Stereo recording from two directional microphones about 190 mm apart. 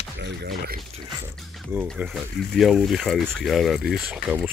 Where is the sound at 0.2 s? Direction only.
60° right (ahead or behind).